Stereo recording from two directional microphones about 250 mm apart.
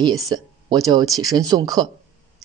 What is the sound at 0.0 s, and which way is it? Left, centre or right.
Speech, centre.